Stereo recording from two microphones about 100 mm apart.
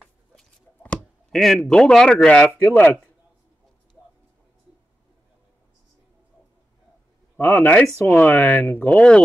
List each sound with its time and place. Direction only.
1.3 s a man's voice: 5° left (ahead or behind)
7.3 s speech: 20° left (ahead or behind)